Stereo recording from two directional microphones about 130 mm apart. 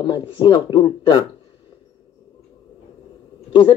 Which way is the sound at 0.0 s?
35° left (ahead or behind).